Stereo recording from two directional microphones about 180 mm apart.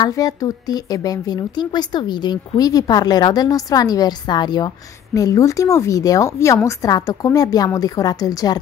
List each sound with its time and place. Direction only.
0.0 s speech: 20° left (ahead or behind)